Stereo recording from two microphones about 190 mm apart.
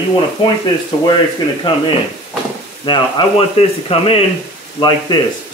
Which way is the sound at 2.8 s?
25° left (ahead or behind).